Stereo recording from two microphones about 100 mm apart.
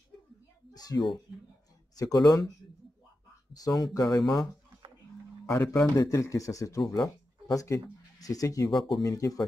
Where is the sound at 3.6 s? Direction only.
40° left (ahead or behind).